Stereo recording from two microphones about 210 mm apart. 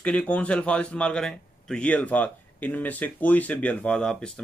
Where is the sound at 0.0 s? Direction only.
5° left (ahead or behind).